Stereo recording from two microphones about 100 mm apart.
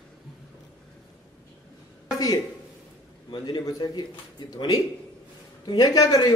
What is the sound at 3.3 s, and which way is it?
A man's voice, 45° left (ahead or behind).